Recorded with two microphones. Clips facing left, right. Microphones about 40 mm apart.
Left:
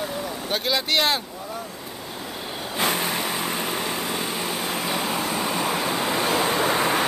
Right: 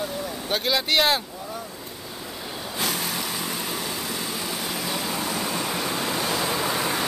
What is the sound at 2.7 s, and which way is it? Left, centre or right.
Vehicle, left.